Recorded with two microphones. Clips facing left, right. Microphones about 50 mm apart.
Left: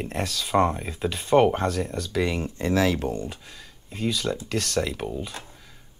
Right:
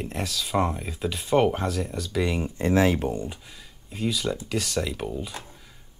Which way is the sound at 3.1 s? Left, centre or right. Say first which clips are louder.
Even; centre.